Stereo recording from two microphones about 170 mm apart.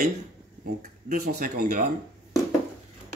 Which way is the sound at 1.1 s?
60° right (ahead or behind).